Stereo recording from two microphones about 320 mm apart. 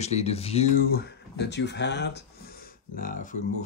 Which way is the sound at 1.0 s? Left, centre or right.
Left.